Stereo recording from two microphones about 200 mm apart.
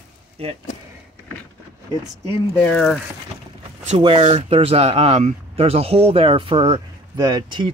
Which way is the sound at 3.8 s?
30° right (ahead or behind).